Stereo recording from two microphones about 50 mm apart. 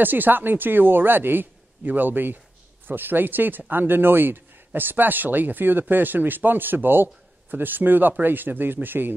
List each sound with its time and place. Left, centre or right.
0.0 s speech: right